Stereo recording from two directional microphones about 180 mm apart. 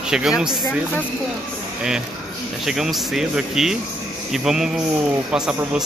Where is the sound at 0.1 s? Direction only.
5° right (ahead or behind).